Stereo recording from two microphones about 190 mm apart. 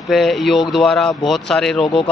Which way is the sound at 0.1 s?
Centre (ahead or behind).